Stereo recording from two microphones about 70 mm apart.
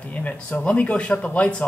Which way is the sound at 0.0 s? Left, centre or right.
Centre.